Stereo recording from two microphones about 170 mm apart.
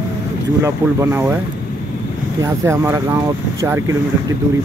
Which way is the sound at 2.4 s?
15° right (ahead or behind).